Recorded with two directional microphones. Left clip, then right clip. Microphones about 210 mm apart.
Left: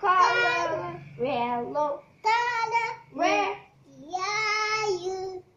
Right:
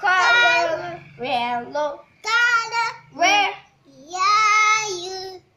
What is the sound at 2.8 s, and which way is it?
Child singing, 35° right (ahead or behind).